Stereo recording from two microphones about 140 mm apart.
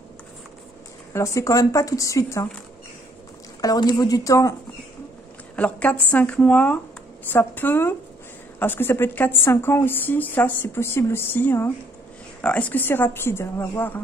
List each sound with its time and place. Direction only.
1.1 s speech: 20° left (ahead or behind)
3.6 s speech: 25° left (ahead or behind)
5.6 s speech: 10° left (ahead or behind)